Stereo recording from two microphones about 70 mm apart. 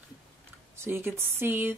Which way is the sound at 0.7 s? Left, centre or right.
Right.